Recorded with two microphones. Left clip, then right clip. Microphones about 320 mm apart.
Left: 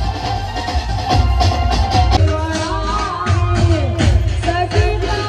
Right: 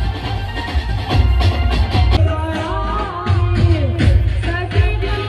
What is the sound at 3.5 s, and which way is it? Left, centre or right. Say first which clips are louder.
Music: left 1 dB; left.